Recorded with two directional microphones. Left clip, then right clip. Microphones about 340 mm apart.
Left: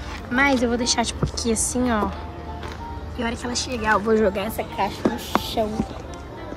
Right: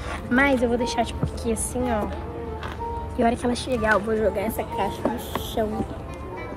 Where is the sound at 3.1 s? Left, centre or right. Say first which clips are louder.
Right 4 dB; centre.